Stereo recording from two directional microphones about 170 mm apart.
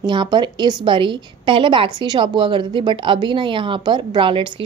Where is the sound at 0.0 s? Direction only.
25° right (ahead or behind).